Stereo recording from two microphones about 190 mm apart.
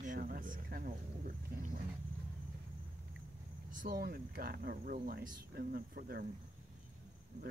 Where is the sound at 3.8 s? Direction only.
50° right (ahead or behind).